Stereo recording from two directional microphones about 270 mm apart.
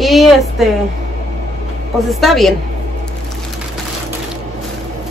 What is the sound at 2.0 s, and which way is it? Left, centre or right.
Speech, centre.